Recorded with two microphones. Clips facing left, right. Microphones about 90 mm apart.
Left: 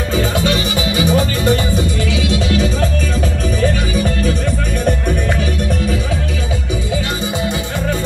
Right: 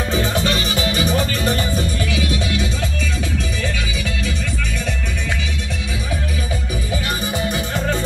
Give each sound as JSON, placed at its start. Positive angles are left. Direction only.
{"t": 0.4, "sound": "music", "side_deg": 20}
{"t": 2.3, "sound": "music", "side_deg": 35}
{"t": 3.9, "sound": "music", "side_deg": 40}